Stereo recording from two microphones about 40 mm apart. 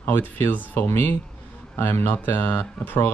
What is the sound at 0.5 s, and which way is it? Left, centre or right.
Speech, left.